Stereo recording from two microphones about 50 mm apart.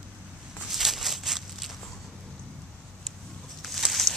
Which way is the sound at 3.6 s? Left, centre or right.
Centre.